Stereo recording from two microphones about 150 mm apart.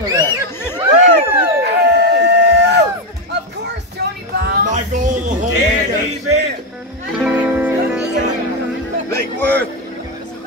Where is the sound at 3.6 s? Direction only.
90° right; by 5.3 s 55° right (ahead or behind).